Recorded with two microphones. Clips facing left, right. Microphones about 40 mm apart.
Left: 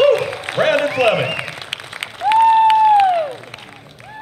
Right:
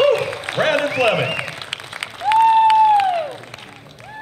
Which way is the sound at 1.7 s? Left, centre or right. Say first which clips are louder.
Left 3 dB; left.